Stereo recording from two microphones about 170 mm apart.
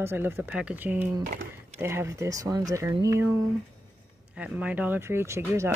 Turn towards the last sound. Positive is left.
turn(degrees=-15)  # may be behind; listen again after turning